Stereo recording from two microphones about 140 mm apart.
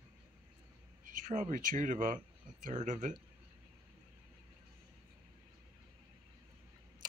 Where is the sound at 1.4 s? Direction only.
65° right (ahead or behind).